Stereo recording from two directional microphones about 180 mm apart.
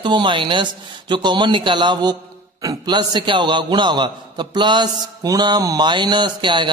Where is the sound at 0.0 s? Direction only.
25° right (ahead or behind).